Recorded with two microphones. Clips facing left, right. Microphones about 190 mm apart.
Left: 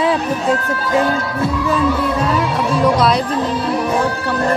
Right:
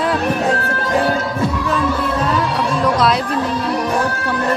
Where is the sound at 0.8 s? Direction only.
25° right (ahead or behind).